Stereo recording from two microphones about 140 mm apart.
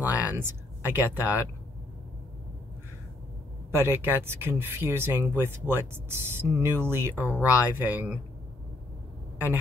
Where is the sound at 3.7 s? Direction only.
15° right (ahead or behind).